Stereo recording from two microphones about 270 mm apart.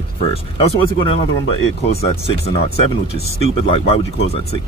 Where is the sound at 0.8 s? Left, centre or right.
Centre.